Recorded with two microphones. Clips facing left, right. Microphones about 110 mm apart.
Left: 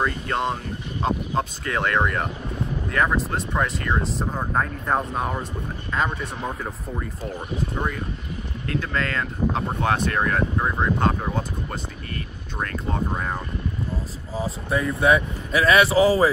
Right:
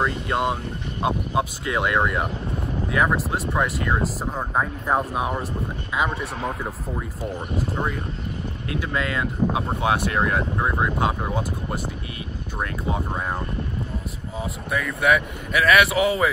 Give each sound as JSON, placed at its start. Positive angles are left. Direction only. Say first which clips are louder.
{"t": 0.0, "sound": "speech", "louder": "right 1 dB", "side_deg": -5}
{"t": 14.3, "sound": "speech", "louder": "left 3 dB", "side_deg": 30}